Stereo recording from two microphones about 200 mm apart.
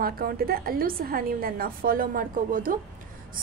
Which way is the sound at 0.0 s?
50° right (ahead or behind).